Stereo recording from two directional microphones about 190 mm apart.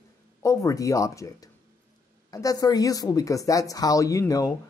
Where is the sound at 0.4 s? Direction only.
15° left (ahead or behind).